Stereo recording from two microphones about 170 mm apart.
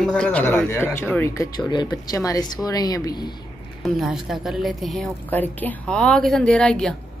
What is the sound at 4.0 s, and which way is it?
A woman's voice, centre (ahead or behind).